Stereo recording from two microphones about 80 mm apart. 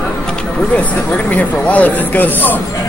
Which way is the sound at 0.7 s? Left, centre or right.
Centre.